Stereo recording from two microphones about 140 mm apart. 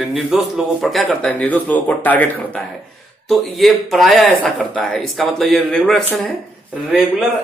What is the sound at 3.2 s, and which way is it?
Speech, centre (ahead or behind).